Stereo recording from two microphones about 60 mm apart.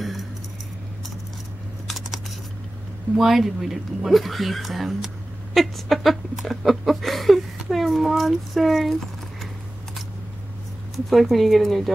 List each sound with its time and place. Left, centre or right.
0.0 s keys jangling: centre
1.9 s scissors: centre
3.2 s speech: centre
11.1 s speech: centre